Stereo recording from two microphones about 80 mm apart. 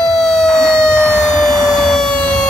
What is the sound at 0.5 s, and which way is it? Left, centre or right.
Emergency vehicle, centre.